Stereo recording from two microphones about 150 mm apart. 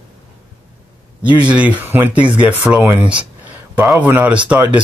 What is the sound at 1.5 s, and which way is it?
Speech, 10° right (ahead or behind).